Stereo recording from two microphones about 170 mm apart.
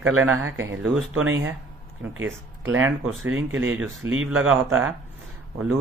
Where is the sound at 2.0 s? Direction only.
10° right (ahead or behind).